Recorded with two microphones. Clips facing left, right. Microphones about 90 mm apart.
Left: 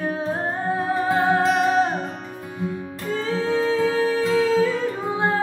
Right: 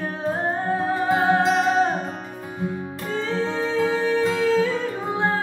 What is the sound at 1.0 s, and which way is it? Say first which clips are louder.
Music: even; 5° right (ahead or behind).